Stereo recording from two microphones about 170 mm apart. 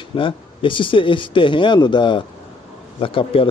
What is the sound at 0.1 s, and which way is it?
Speech, 30° left (ahead or behind).